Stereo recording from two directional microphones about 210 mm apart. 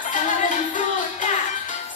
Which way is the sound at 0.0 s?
40° left (ahead or behind).